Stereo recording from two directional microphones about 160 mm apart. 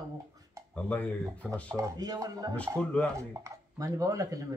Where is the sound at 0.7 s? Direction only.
10° left (ahead or behind).